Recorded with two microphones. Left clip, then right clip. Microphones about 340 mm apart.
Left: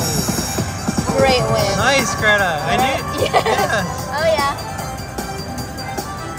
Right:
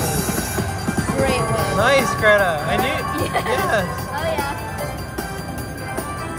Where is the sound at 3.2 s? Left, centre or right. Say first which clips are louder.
Left 6 dB; centre.